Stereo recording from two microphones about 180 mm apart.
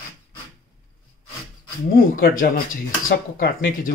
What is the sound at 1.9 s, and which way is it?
Speech, 50° left (ahead or behind).